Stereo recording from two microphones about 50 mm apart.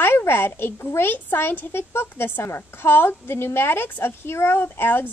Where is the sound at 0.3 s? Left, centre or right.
Left.